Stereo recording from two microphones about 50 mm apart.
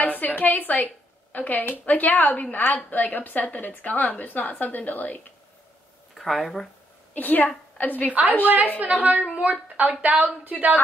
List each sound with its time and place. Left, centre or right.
0.0 s a woman's voice: left
6.1 s speech: centre
7.2 s a woman's voice: left
8.1 s a woman's voice: right